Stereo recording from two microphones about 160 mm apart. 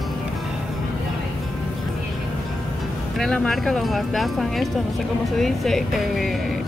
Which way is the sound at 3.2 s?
Centre (ahead or behind).